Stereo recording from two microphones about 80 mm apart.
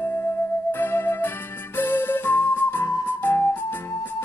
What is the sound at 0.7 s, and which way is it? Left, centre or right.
Music, left.